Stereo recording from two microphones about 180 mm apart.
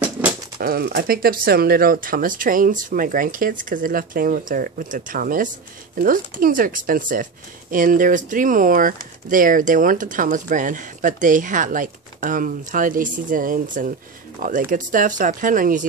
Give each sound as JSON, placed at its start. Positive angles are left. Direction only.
{"t": 0.6, "sound": "speech", "side_deg": -60}